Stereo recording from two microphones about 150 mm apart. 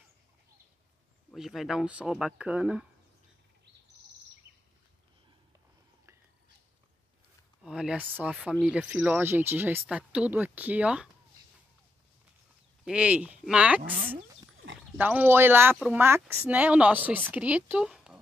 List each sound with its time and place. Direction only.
1.3 s speech: centre (ahead or behind)
7.6 s speech: 5° right (ahead or behind)
12.8 s speech: 5° right (ahead or behind)
13.8 s speech: 65° right (ahead or behind)
15.0 s speech: 10° right (ahead or behind)